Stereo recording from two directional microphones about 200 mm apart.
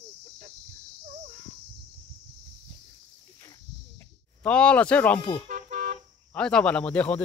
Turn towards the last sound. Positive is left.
turn(degrees=5)  # may be behind; listen again after turning